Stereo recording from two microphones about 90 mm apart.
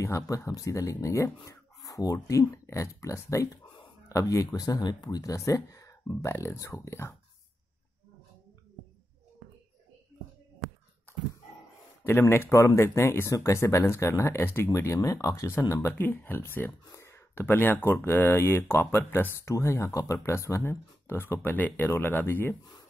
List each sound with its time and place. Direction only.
0.0 s speech: 35° left (ahead or behind)
12.1 s speech: 25° left (ahead or behind)